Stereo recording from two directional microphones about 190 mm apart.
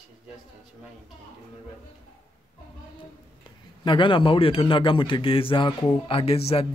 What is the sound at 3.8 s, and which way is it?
A man's voice, 25° left (ahead or behind).